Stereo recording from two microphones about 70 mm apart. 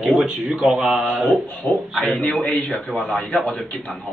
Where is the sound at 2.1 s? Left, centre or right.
Centre.